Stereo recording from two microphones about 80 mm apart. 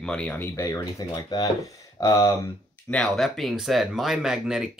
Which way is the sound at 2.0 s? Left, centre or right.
Left.